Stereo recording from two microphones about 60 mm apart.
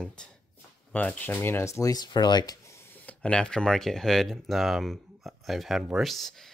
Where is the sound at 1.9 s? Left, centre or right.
Left.